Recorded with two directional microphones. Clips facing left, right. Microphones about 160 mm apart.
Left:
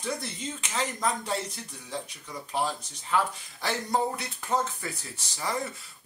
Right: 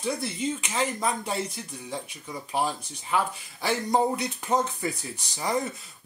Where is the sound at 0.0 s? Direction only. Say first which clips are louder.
Right 5 dB; 10° right (ahead or behind).